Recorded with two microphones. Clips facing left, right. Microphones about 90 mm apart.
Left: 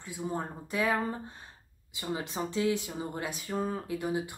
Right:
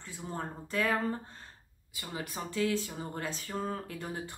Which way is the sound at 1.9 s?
20° left (ahead or behind).